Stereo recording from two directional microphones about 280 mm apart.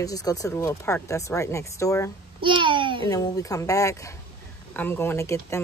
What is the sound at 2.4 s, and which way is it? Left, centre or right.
Speech, centre.